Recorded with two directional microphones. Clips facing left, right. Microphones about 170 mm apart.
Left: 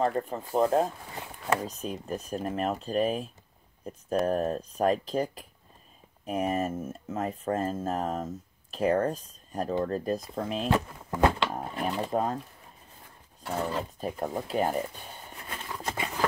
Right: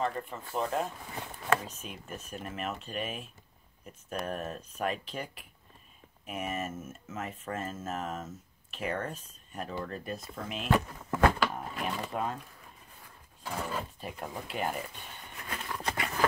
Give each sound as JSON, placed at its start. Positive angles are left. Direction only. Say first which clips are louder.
{"t": 0.0, "sound": "speech", "louder": "left 6 dB", "side_deg": 40}
{"t": 4.3, "sound": "speech", "louder": "left 9 dB", "side_deg": 35}
{"t": 10.7, "sound": "speech", "louder": "left 1 dB", "side_deg": 20}
{"t": 11.5, "sound": "speech", "louder": "left 5 dB", "side_deg": 40}
{"t": 13.5, "sound": "speech", "louder": "left 5 dB", "side_deg": 40}
{"t": 16.0, "sound": "a sound", "louder": "even", "side_deg": 15}